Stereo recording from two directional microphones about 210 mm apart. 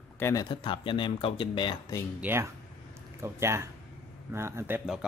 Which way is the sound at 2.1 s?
10° right (ahead or behind).